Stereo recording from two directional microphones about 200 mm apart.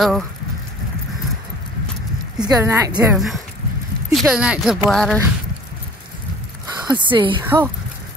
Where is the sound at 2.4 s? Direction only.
10° right (ahead or behind).